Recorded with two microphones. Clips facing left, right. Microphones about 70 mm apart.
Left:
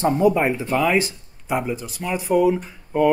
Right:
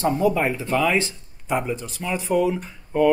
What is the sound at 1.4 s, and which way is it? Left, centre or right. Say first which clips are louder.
Speech: left 1 dB; centre.